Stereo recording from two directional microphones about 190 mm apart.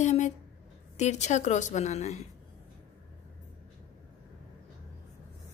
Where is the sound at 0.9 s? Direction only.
35° left (ahead or behind).